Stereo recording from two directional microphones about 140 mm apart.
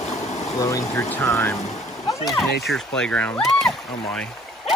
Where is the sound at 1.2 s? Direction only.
15° left (ahead or behind).